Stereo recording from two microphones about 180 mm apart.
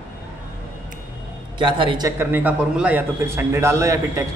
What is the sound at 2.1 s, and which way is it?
A man's voice, 10° right (ahead or behind).